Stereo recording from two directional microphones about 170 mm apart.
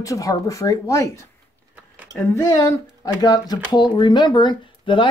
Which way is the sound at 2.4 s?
20° left (ahead or behind).